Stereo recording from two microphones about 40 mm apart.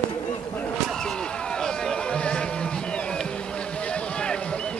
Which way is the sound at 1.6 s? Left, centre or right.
Centre.